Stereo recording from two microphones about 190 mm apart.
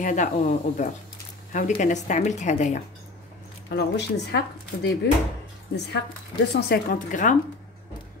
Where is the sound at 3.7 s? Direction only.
65° left (ahead or behind).